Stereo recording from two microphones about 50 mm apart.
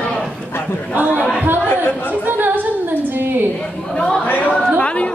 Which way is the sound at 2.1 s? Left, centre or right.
Right.